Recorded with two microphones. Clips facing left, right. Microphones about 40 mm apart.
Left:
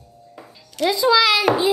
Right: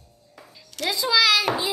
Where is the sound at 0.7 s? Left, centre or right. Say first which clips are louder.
Left 6 dB; centre.